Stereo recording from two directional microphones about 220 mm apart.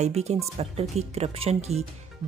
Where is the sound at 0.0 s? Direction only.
30° right (ahead or behind).